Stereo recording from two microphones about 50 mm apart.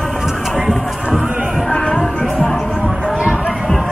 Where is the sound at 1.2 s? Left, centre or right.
Centre.